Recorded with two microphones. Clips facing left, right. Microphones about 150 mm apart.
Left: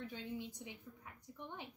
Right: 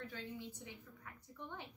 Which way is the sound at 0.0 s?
20° left (ahead or behind).